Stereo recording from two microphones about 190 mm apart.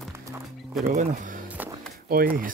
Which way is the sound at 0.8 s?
45° right (ahead or behind).